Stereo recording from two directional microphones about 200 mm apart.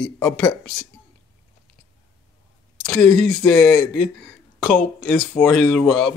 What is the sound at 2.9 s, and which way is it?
A man's voice, 5° left (ahead or behind).